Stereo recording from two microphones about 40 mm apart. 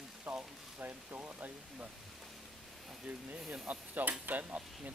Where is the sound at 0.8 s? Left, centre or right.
Right.